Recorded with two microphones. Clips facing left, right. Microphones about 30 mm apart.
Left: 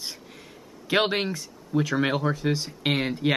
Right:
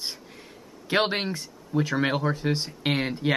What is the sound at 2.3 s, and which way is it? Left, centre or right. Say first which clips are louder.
Speech: left 1 dB; centre.